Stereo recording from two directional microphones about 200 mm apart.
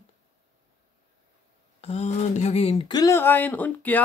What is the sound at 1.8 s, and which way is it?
Speech, 30° left (ahead or behind).